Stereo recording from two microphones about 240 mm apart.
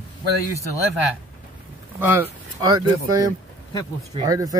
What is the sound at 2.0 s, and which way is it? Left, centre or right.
Speech, centre.